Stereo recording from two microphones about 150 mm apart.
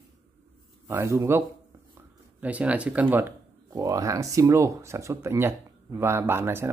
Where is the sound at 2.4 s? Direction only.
10° right (ahead or behind).